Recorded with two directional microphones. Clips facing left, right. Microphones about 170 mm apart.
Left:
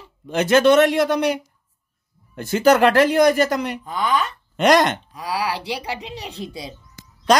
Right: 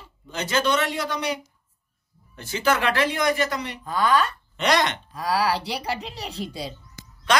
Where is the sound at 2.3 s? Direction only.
50° left (ahead or behind).